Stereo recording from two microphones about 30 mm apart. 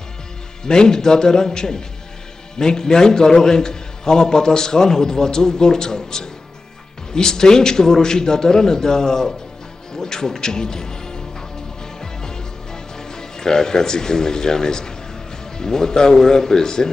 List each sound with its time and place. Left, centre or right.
0.7 s a man's voice: left
7.2 s a man's voice: left
12.0 s music: left
15.5 s a man's voice: left